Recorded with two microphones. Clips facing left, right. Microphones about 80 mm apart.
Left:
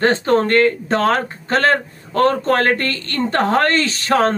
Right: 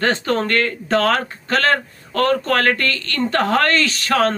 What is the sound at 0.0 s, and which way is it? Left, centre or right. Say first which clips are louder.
Speech: left 4 dB; left.